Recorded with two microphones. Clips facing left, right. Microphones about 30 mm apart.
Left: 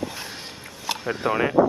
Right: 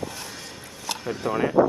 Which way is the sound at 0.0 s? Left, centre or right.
Left.